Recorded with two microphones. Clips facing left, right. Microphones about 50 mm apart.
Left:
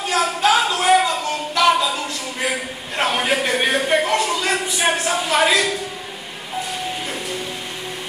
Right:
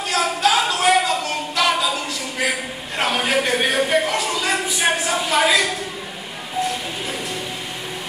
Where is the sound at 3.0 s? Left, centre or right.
Left.